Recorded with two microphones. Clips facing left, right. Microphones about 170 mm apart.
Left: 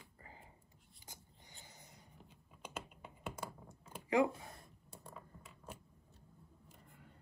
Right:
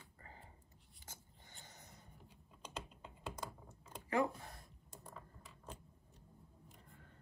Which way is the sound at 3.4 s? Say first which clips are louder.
Left 1 dB; 15° left (ahead or behind).